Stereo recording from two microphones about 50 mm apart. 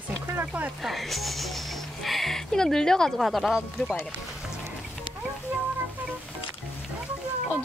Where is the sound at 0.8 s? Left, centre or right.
Centre.